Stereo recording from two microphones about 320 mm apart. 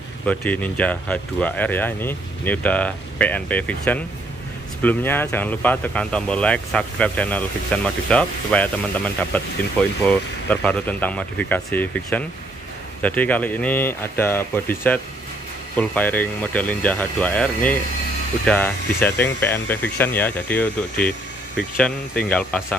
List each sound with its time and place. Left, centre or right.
0.3 s speech: centre